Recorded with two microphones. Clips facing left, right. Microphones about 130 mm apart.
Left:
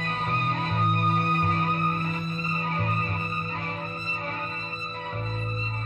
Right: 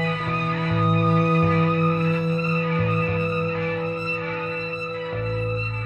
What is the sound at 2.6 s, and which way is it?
Music, 35° left (ahead or behind).